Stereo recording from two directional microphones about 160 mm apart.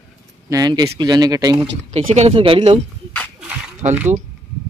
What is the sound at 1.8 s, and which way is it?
Speech, 40° right (ahead or behind).